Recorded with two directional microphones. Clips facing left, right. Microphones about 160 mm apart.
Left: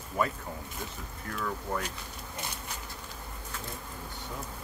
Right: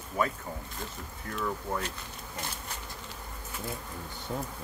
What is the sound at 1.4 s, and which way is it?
Speech, 5° right (ahead or behind).